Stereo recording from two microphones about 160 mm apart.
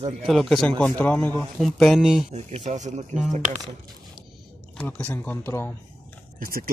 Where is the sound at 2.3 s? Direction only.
45° right (ahead or behind).